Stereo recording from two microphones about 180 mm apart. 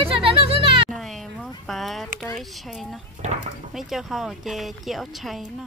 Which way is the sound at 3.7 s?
Centre (ahead or behind).